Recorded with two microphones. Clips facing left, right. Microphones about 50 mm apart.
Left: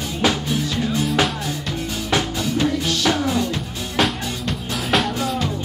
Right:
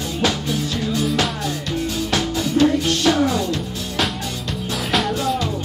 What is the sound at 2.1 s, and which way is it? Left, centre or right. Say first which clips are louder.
Music: even; centre.